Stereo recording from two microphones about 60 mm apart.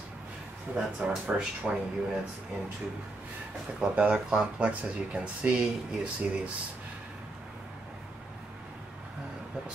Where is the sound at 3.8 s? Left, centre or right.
Right.